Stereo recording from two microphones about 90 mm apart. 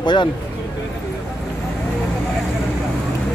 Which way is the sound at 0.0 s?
55° left (ahead or behind).